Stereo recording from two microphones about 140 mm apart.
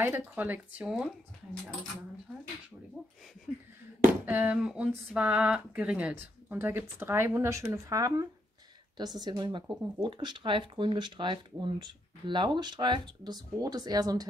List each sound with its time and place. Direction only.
0.2 s speech: 10° right (ahead or behind)
3.5 s speech: centre (ahead or behind)
4.3 s speech: 10° right (ahead or behind); by 14.2 s 30° right (ahead or behind)